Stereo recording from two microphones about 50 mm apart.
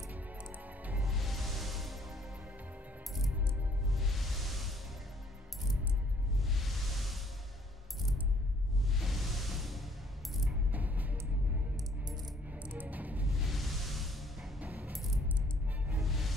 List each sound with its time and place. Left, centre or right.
0.1 s music: right
1.0 s music: centre
3.9 s music: centre
6.4 s music: centre
8.8 s music: centre
10.7 s music: right
12.6 s music: right
13.4 s music: centre
14.6 s coin: right
16.0 s music: centre